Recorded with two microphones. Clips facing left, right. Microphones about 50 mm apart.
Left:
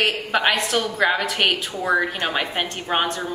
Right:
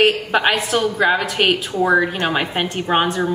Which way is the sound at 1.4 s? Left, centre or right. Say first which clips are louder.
Right 5 dB; right.